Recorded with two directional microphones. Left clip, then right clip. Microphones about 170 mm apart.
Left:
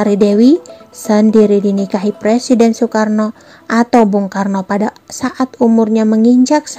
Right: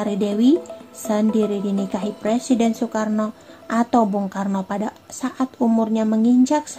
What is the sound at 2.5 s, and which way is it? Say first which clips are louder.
A woman's voice: left 10 dB; 30° left (ahead or behind).